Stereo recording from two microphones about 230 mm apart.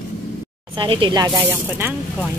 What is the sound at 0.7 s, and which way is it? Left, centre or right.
Speech, right.